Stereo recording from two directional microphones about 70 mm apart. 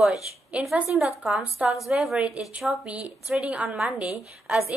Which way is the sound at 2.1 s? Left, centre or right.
Centre.